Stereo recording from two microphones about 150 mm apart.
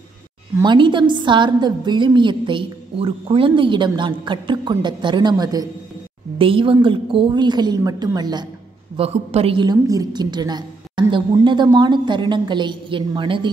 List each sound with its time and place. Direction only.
0.7 s a woman's voice: 30° right (ahead or behind)
6.3 s a woman's voice: 35° right (ahead or behind)
8.9 s a woman's voice: 40° right (ahead or behind)